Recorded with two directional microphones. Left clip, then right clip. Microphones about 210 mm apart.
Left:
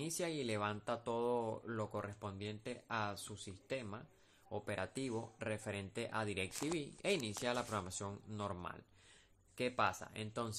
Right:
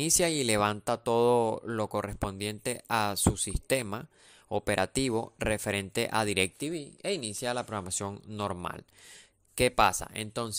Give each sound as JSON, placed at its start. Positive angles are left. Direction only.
{"t": 0.0, "sound": "speech", "side_deg": -50}
{"t": 6.8, "sound": "speech", "side_deg": -25}